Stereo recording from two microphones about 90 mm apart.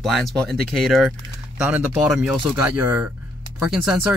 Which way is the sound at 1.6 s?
15° right (ahead or behind).